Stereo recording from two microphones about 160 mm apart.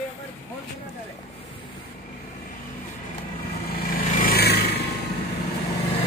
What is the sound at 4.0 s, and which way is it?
Vehicle, 55° left (ahead or behind).